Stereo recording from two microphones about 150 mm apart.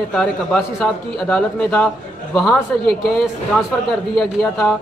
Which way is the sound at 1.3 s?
5° left (ahead or behind).